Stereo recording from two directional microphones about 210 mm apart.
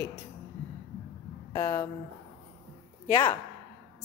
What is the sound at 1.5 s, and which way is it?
Speech, 15° left (ahead or behind).